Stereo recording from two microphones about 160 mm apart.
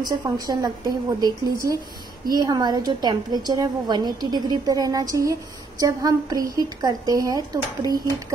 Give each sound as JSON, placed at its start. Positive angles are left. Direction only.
{"t": 0.0, "sound": "a woman's voice", "side_deg": -25}